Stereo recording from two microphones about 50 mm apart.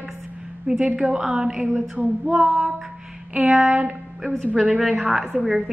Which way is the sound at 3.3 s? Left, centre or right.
Right.